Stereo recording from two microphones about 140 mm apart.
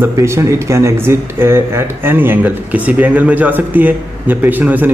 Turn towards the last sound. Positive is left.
turn(degrees=-10)  # may be behind; listen again after turning